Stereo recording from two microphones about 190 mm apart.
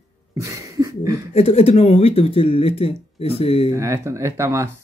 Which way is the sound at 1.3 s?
35° left (ahead or behind).